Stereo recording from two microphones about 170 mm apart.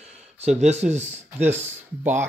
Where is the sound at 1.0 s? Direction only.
10° right (ahead or behind).